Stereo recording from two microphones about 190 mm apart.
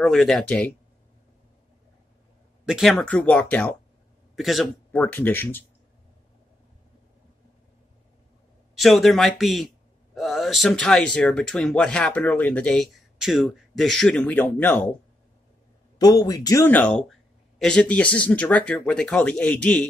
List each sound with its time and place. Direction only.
0.0 s speech: centre (ahead or behind)
2.6 s a man's voice: centre (ahead or behind)
5.0 s speech: 10° left (ahead or behind)
8.7 s speech: centre (ahead or behind)
16.0 s speech: 20° left (ahead or behind)